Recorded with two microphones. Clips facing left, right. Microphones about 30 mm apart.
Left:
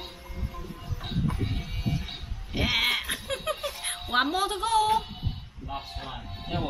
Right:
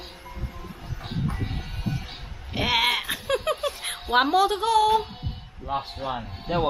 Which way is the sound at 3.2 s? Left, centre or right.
Right.